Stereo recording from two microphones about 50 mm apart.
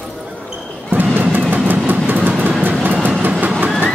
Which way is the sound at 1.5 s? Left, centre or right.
Right.